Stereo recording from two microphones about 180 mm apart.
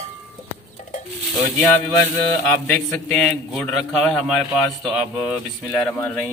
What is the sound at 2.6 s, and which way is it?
A man's voice, 5° left (ahead or behind).